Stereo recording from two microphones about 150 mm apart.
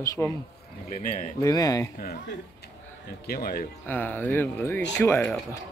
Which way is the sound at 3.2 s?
80° left.